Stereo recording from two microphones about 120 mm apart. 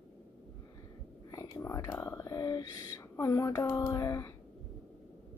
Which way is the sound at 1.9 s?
35° left (ahead or behind).